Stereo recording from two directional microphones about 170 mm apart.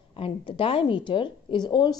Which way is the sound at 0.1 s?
30° left (ahead or behind).